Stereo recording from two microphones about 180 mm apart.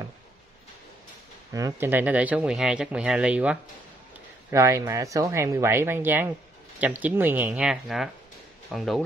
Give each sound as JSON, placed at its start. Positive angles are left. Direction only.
{"t": 1.5, "sound": "speech", "side_deg": -15}